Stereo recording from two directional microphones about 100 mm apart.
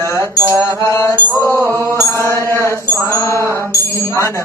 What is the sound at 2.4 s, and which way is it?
Music, 30° right (ahead or behind).